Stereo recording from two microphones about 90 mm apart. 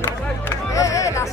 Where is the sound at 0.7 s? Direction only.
40° left (ahead or behind).